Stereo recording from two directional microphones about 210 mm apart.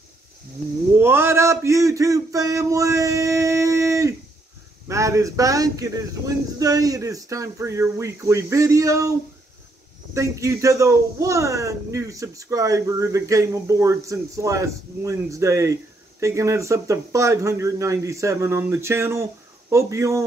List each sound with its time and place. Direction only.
0.9 s speech: 10° right (ahead or behind)
10.1 s speech: 15° right (ahead or behind)